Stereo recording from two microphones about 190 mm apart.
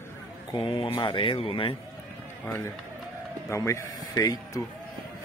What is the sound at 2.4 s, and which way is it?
Speech, 10° left (ahead or behind).